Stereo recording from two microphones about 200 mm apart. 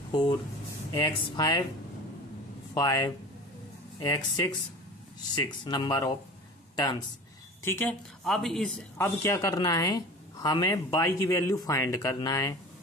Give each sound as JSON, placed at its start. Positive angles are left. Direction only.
{"t": 1.0, "sound": "speech", "side_deg": 20}
{"t": 2.7, "sound": "speech", "side_deg": 20}
{"t": 8.2, "sound": "speech", "side_deg": 0}